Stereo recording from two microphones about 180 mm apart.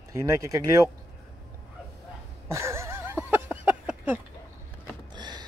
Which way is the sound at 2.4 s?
15° right (ahead or behind).